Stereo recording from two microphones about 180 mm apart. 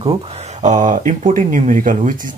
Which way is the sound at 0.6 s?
45° right (ahead or behind).